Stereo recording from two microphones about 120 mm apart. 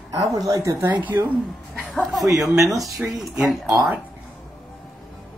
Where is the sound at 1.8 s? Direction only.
5° right (ahead or behind).